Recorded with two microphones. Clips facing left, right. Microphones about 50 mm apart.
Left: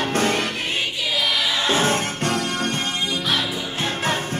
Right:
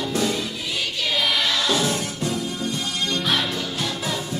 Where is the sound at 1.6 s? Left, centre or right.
Left.